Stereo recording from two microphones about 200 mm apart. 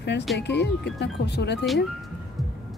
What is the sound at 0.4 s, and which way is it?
Speech, 60° left (ahead or behind).